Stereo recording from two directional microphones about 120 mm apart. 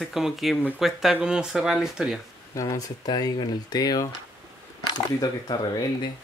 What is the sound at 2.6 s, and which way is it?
Speech, 30° left (ahead or behind).